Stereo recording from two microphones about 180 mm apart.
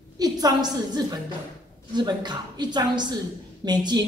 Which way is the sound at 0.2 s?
20° right (ahead or behind).